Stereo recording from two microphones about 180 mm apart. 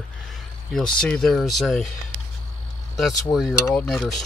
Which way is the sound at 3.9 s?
Centre (ahead or behind).